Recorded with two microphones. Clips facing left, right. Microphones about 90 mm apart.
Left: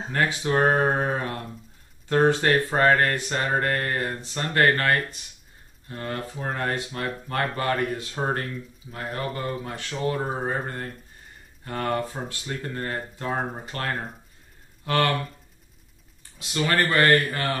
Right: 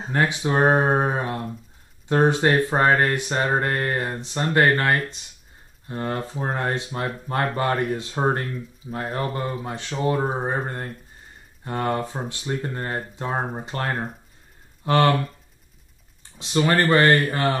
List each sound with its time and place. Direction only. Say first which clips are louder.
0.1 s speech: right 2 dB; 20° right (ahead or behind)
16.3 s speech: right 4 dB; 25° right (ahead or behind)